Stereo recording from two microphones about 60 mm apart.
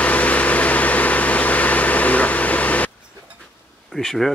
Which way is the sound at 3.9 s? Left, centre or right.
Centre.